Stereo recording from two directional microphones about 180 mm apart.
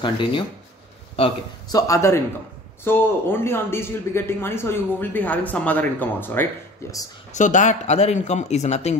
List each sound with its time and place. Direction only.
0.0 s speech: 25° left (ahead or behind)
1.7 s a man's voice: 20° left (ahead or behind)
7.3 s speech: 45° left (ahead or behind)